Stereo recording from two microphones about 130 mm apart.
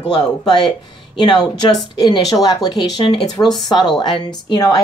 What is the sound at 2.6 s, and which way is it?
Speech, 40° left (ahead or behind).